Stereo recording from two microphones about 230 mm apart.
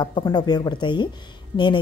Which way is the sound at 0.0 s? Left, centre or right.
Centre.